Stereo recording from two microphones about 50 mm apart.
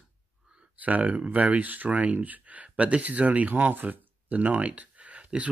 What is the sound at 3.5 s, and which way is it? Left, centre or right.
Speech, right.